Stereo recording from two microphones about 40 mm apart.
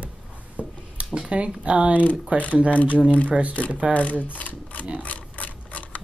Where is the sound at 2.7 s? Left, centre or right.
Left.